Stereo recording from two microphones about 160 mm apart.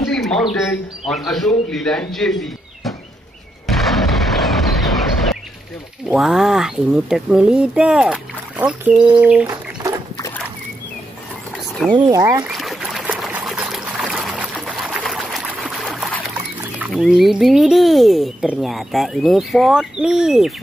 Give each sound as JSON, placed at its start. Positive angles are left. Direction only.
{"t": 0.1, "sound": "bird", "side_deg": 0}
{"t": 1.0, "sound": "speech", "side_deg": 0}
{"t": 3.6, "sound": "artillery fire", "side_deg": 0}
{"t": 6.0, "sound": "speech", "side_deg": -5}
{"t": 9.2, "sound": "bird", "side_deg": -10}
{"t": 12.1, "sound": "speech", "side_deg": -25}
{"t": 12.4, "sound": "trickle", "side_deg": 0}
{"t": 16.9, "sound": "speech", "side_deg": 0}